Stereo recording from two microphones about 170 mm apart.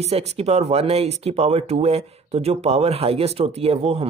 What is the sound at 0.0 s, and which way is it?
Speech, 40° right (ahead or behind).